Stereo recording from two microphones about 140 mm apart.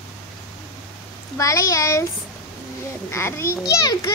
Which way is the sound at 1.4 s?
25° left (ahead or behind).